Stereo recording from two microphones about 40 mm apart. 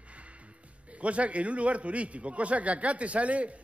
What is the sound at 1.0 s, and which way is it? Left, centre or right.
A man's voice, right.